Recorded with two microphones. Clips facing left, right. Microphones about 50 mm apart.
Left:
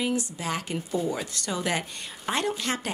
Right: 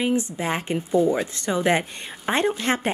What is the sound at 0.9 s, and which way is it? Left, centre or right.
Speech, centre.